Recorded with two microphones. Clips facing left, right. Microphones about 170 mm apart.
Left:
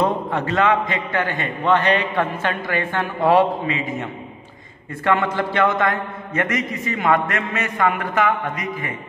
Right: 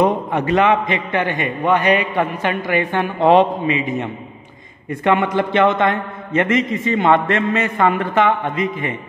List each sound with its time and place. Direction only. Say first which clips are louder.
0.0 s a man's voice: right 4 dB; 15° right (ahead or behind)